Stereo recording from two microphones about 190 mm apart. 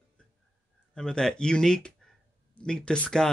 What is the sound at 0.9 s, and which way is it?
Speech, 5° left (ahead or behind).